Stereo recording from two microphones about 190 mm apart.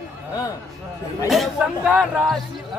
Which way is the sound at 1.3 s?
5° right (ahead or behind).